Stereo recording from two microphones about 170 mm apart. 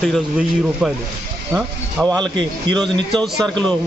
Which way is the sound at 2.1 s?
25° right (ahead or behind).